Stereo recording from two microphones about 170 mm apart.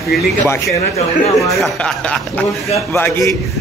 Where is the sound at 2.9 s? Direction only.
15° left (ahead or behind).